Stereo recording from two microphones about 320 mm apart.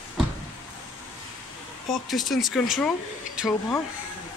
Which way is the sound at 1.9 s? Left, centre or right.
Centre.